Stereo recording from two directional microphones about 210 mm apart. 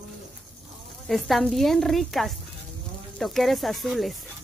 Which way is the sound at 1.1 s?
Centre (ahead or behind).